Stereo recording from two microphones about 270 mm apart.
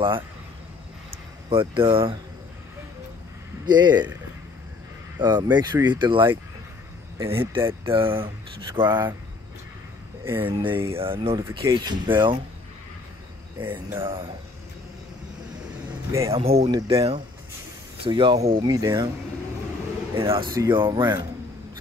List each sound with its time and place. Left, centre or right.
1.1 s vehicle: centre
1.8 s speech: centre
3.6 s speech: centre
5.2 s speech: centre
10.2 s speech: centre
11.0 s speech: centre
13.6 s speech: centre
16.1 s speech: centre
16.4 s speech: right
20.2 s speech: centre